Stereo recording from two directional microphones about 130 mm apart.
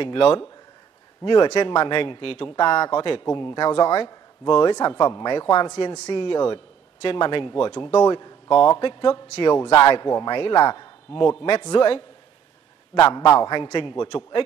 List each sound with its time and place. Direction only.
0.0 s speech: 45° left (ahead or behind)
8.5 s speech: 40° left (ahead or behind)
12.9 s speech: 30° left (ahead or behind)